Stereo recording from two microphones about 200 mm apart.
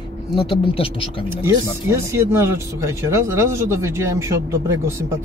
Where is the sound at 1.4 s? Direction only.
15° right (ahead or behind).